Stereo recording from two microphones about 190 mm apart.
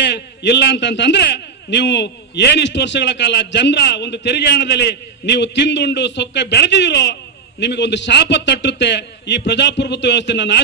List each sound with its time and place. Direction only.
0.0 s a man's voice: 65° left (ahead or behind)